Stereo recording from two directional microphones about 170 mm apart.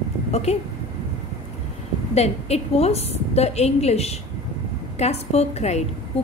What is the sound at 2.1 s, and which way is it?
A woman's voice, 40° left (ahead or behind).